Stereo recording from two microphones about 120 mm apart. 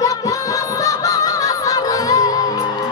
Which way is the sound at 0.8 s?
30° left (ahead or behind).